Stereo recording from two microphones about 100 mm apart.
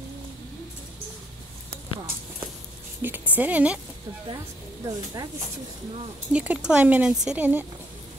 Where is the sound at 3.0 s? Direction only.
20° right (ahead or behind).